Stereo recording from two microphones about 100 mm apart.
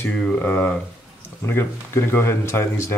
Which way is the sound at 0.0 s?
15° left (ahead or behind).